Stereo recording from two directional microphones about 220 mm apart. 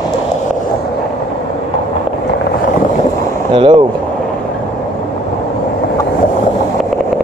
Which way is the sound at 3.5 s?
20° right (ahead or behind).